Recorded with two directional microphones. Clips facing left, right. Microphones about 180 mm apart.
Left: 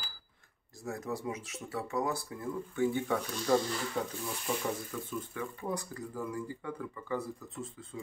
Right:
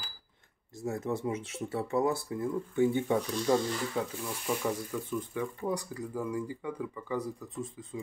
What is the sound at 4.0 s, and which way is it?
Speech, 5° right (ahead or behind).